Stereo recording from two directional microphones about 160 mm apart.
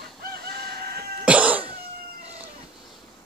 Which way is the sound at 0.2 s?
70° right (ahead or behind).